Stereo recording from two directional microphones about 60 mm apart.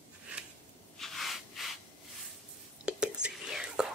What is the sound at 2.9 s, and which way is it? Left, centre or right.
Whispering, centre.